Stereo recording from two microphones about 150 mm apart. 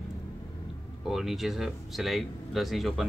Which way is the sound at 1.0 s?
Centre (ahead or behind).